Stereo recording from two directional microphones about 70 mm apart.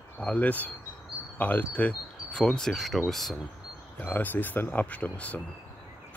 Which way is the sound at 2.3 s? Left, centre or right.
Centre.